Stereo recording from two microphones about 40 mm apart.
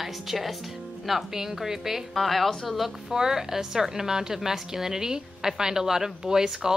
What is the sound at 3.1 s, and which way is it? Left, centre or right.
A woman's voice, centre.